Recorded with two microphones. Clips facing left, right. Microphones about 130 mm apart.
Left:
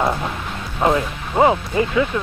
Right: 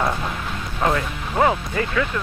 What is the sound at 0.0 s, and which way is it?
Vehicle, 15° left (ahead or behind).